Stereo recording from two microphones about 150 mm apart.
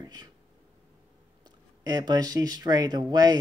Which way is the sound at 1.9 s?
25° right (ahead or behind).